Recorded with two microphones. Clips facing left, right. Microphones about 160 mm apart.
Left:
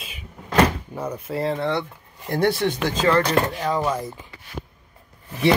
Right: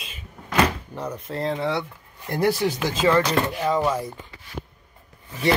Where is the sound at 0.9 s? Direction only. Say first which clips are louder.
Left 3 dB; 10° left (ahead or behind).